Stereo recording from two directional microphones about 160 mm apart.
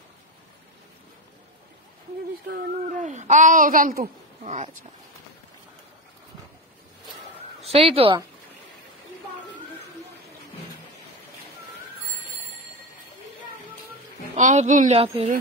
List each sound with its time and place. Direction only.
2.4 s speech: 75° right (ahead or behind)
2.9 s speech: 50° right (ahead or behind)
7.6 s speech: 35° right (ahead or behind)
14.3 s a woman's voice: 45° right (ahead or behind)